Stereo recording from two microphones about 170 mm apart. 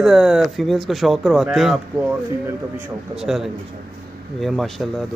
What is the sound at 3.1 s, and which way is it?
A man's voice, centre (ahead or behind).